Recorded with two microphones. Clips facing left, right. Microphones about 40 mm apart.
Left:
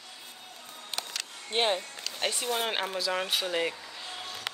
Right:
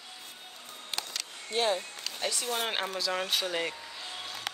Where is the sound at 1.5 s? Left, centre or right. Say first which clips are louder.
Left 1 dB; left.